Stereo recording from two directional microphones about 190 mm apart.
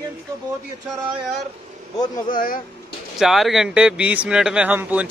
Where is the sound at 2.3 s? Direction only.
50° left (ahead or behind).